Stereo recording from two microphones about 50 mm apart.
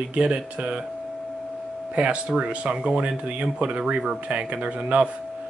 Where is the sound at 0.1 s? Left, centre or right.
Right.